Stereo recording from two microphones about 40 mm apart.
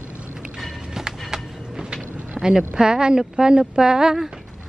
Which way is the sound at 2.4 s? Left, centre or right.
Centre.